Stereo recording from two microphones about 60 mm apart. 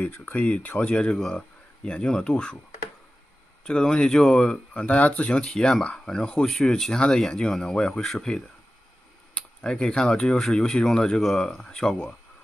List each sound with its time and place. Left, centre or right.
0.0 s speech: left; by 2.6 s centre
3.6 s speech: centre
4.7 s speech: left
5.5 s speech: centre